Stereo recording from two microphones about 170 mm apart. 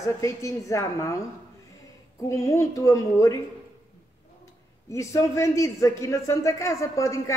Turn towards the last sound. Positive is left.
turn(degrees=20)  # may be behind; listen again after turning